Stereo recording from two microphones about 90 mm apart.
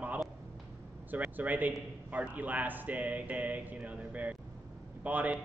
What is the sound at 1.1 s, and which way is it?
Speech, 15° right (ahead or behind).